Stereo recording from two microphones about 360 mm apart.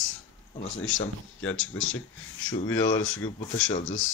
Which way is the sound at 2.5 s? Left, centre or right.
Centre.